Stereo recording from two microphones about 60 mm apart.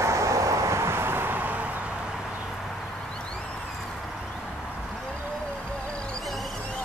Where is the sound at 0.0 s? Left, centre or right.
Right.